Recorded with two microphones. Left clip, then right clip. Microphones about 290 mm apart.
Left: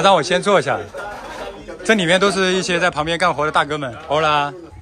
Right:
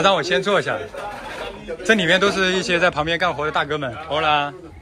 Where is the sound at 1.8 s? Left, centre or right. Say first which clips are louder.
Left 1 dB; centre.